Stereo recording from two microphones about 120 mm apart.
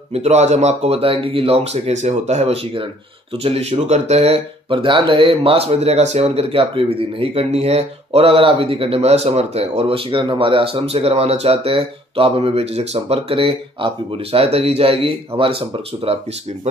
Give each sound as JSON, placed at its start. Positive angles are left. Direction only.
{"t": 0.1, "sound": "speech", "side_deg": -65}